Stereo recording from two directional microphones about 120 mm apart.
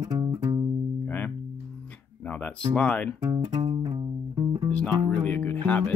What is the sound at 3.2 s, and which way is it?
Music, 30° right (ahead or behind).